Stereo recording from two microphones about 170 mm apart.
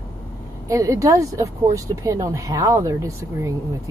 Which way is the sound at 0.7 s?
20° right (ahead or behind).